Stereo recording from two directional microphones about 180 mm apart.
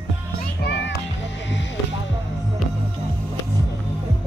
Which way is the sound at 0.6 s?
70° left (ahead or behind).